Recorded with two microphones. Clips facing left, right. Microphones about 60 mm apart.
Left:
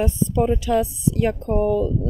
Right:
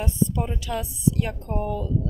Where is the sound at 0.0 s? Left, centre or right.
Left.